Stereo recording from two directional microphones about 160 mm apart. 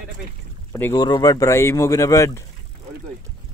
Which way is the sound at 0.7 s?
15° left (ahead or behind).